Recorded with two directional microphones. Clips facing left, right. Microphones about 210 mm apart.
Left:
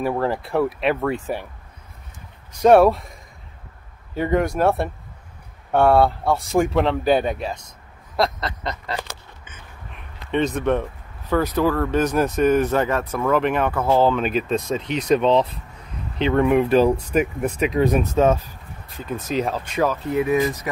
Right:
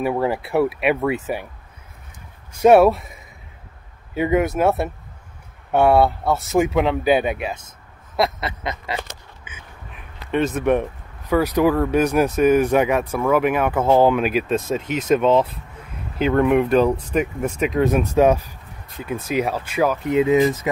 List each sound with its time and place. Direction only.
0.0 s speech: 5° right (ahead or behind)
2.6 s speech: 5° right (ahead or behind)
18.1 s speech: 15° right (ahead or behind)